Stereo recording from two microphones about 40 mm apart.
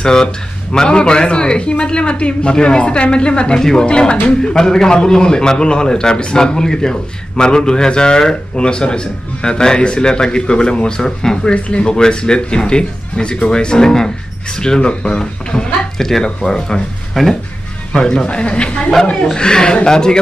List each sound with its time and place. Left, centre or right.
0.0 s a man's voice: centre
4.4 s a man's voice: centre
11.5 s a man's voice: left
19.2 s speech: centre